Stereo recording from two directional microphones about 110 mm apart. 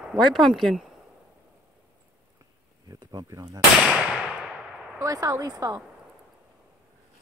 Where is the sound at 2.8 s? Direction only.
35° right (ahead or behind).